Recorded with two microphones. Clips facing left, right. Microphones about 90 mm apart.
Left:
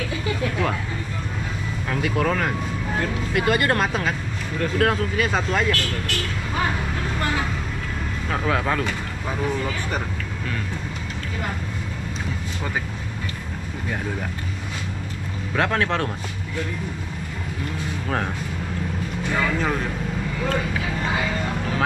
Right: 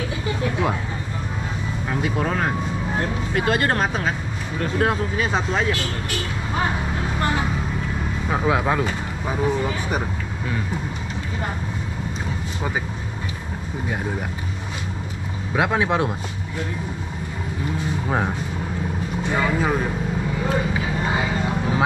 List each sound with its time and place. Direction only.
1.9 s speech: 20° right (ahead or behind)
4.6 s speech: 5° right (ahead or behind)
6.6 s vehicle: 20° right (ahead or behind)
8.3 s speech: 15° right (ahead or behind)
15.5 s speech: 15° right (ahead or behind)
18.0 s speech: 15° right (ahead or behind)
20.4 s vehicle: 15° right (ahead or behind)